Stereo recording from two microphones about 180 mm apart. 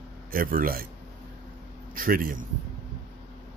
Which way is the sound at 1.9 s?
50° right (ahead or behind).